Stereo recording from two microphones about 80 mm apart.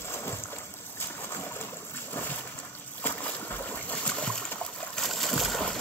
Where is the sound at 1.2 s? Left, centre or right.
Left.